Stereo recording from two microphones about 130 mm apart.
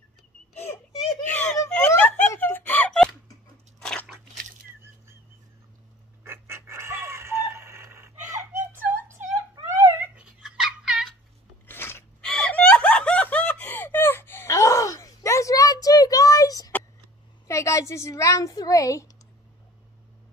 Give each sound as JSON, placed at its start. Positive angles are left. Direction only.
{"t": 1.2, "sound": "a sound", "side_deg": 15}
{"t": 3.8, "sound": "crunch", "side_deg": 10}
{"t": 6.2, "sound": "chicken", "side_deg": -20}
{"t": 9.7, "sound": "dog", "side_deg": -20}
{"t": 11.6, "sound": "a sound", "side_deg": 15}
{"t": 12.3, "sound": "snicker", "side_deg": 10}
{"t": 17.5, "sound": "a woman's voice", "side_deg": 25}